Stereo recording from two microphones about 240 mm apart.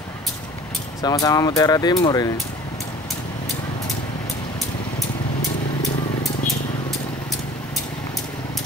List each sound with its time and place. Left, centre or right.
1.0 s speech: centre